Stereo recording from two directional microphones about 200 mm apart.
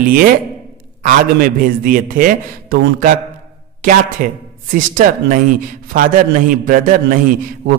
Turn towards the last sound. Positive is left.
turn(degrees=-50)  # may be behind; listen again after turning